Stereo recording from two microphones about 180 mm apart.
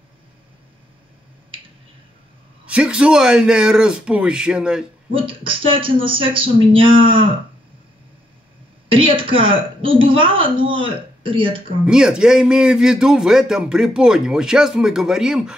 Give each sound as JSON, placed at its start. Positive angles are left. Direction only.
{"t": 2.6, "sound": "a man's voice", "side_deg": -5}
{"t": 5.1, "sound": "a woman's voice", "side_deg": -30}
{"t": 8.8, "sound": "a woman's voice", "side_deg": -30}
{"t": 11.8, "sound": "a man's voice", "side_deg": -5}